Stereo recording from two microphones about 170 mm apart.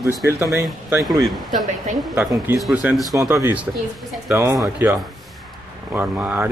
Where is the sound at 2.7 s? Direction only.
10° right (ahead or behind).